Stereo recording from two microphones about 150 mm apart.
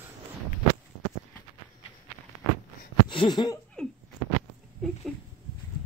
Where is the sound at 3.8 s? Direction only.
5° left (ahead or behind).